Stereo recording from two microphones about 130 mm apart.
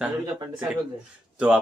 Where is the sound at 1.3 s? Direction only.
10° right (ahead or behind).